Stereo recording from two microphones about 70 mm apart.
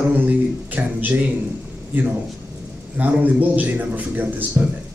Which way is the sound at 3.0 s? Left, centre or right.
Right.